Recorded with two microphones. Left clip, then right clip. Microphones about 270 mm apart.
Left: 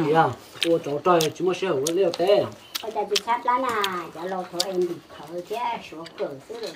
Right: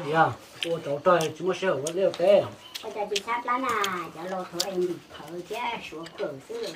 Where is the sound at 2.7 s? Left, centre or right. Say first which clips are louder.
Left 5 dB; centre.